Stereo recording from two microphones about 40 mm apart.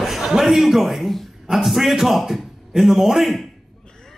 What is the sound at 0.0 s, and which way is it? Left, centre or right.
A man's voice, centre.